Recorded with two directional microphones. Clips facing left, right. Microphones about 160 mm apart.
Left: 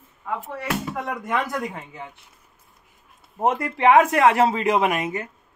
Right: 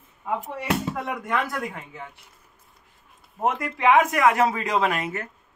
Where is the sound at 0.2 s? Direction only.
15° right (ahead or behind).